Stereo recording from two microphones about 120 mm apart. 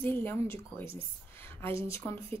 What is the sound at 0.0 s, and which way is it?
Speech, 15° left (ahead or behind).